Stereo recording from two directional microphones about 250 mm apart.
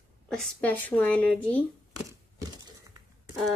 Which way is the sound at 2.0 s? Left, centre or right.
Centre.